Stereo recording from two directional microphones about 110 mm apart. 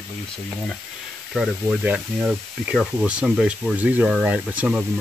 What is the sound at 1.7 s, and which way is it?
Speech, 15° right (ahead or behind).